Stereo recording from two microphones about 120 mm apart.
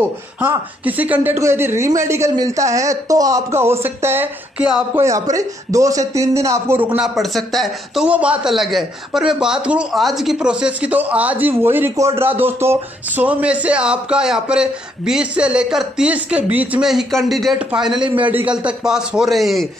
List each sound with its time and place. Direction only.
0.4 s speech: 15° right (ahead or behind)
7.0 s speech: centre (ahead or behind)